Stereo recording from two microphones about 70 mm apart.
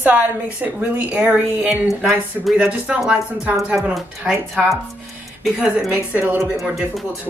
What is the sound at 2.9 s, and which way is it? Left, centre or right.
Speech, centre.